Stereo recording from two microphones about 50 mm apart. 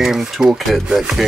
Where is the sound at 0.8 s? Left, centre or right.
Centre.